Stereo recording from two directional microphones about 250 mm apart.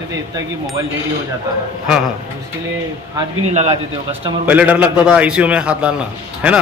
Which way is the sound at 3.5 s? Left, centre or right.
Right.